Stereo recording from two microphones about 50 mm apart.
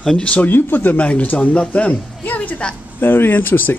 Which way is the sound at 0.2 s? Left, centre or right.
Left.